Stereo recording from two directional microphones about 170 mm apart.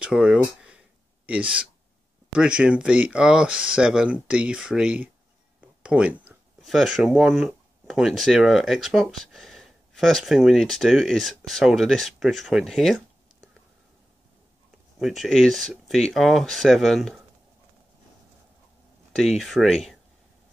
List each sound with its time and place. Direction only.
0.0 s speech: 5° right (ahead or behind)
15.0 s speech: centre (ahead or behind)
19.1 s speech: centre (ahead or behind)